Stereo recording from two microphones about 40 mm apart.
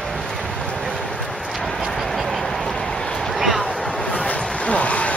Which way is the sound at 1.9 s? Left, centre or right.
Centre.